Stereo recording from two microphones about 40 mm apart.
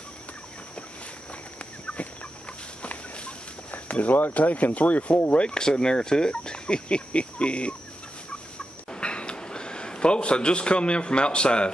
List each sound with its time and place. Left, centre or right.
1.6 s fowl: left
2.8 s chicken: left
3.7 s speech: left
5.3 s speech: left
8.9 s a sound: left